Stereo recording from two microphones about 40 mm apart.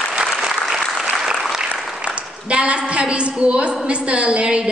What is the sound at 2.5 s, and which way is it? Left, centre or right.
A woman's voice, right.